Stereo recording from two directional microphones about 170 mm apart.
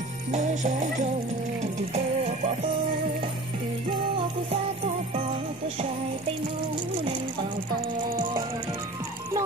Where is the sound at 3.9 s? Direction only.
30° right (ahead or behind).